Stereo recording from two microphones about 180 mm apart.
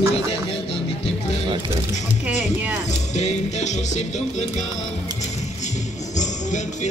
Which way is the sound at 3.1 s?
40° left (ahead or behind).